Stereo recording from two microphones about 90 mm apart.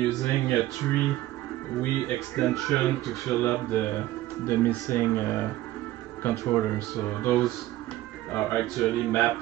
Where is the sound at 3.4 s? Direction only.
15° left (ahead or behind).